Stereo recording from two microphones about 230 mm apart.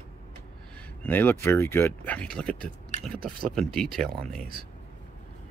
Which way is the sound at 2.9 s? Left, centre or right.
Left.